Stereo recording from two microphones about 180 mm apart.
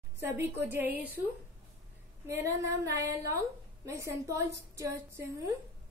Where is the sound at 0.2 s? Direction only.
10° right (ahead or behind).